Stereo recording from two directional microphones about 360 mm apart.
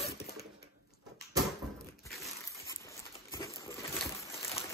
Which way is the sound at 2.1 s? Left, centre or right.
Centre.